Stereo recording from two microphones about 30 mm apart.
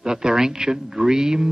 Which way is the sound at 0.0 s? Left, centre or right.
Right.